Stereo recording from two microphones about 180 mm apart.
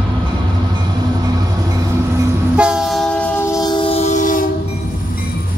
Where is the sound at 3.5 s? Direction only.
25° left (ahead or behind); by 4.5 s 45° left (ahead or behind).